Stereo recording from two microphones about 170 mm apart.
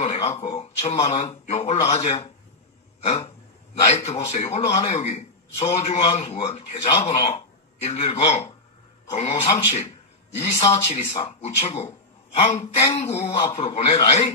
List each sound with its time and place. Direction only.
0.0 s speech: 40° left (ahead or behind)
3.0 s throat clearing: 40° left (ahead or behind)
3.8 s a man's voice: 40° left (ahead or behind)
9.7 s a sound: 40° left (ahead or behind)
10.5 s speech: 35° left (ahead or behind)